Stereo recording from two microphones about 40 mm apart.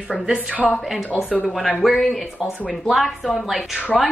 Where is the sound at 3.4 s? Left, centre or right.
Centre.